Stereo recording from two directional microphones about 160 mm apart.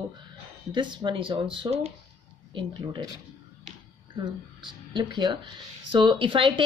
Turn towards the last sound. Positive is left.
turn(degrees=-30)  # may be behind; listen again after turning